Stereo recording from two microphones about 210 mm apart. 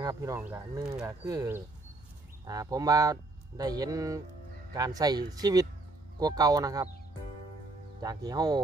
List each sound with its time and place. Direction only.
0.0 s speech: 15° right (ahead or behind)
8.0 s speech: 20° right (ahead or behind)